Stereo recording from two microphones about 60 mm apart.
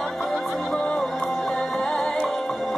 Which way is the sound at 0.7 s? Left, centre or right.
Centre.